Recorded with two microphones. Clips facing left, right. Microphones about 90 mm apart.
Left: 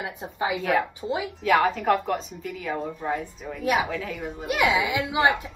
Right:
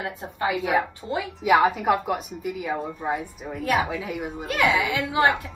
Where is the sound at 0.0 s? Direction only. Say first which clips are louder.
Right 1 dB; 15° left (ahead or behind).